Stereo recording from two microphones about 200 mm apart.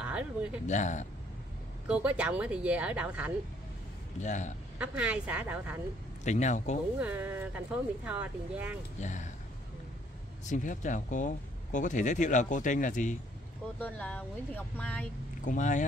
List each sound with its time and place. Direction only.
0.0 s speech: 5° right (ahead or behind)
0.7 s speech: 35° left (ahead or behind)
1.9 s a woman's voice: 5° right (ahead or behind)
4.2 s speech: 35° left (ahead or behind)
4.7 s speech: 5° right (ahead or behind)
6.2 s speech: 35° left (ahead or behind)
7.0 s speech: 10° right (ahead or behind)
9.0 s speech: 35° left (ahead or behind)
10.4 s speech: 40° left (ahead or behind)
13.7 s a woman's voice: 5° left (ahead or behind)
15.4 s speech: 40° left (ahead or behind)